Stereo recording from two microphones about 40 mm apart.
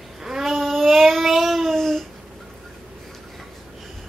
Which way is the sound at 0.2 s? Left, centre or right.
Centre.